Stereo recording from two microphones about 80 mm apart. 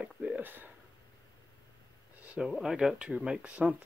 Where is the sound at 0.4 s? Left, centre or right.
Right.